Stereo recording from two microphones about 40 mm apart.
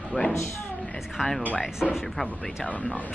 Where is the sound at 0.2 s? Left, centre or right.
Left.